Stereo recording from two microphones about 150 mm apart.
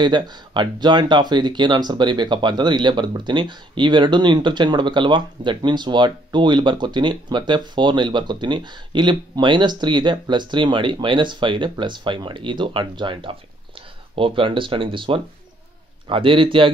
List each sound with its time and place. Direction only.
0.0 s speech: 30° right (ahead or behind)